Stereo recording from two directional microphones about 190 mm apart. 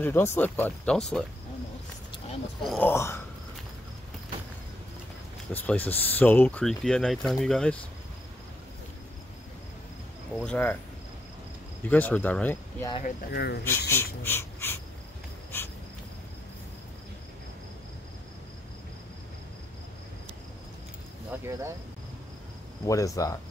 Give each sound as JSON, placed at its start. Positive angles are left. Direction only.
{"t": 0.0, "sound": "speech", "side_deg": 15}
{"t": 2.6, "sound": "speech", "side_deg": 0}
{"t": 2.9, "sound": "speech", "side_deg": 15}
{"t": 5.5, "sound": "speech", "side_deg": 10}
{"t": 10.3, "sound": "speech", "side_deg": 5}
{"t": 11.8, "sound": "speech", "side_deg": 10}
{"t": 13.0, "sound": "speech", "side_deg": 55}
{"t": 13.7, "sound": "speech", "side_deg": 10}
{"t": 15.5, "sound": "a sound", "side_deg": 10}
{"t": 21.3, "sound": "a sound", "side_deg": -10}
{"t": 22.8, "sound": "speech", "side_deg": 15}